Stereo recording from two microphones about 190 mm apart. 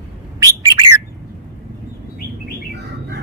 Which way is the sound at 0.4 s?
15° right (ahead or behind).